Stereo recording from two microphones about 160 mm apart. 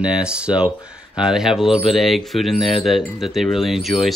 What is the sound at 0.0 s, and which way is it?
Speech, 5° right (ahead or behind).